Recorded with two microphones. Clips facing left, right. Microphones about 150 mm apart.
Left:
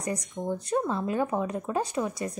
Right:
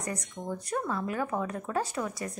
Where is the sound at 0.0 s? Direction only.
20° left (ahead or behind).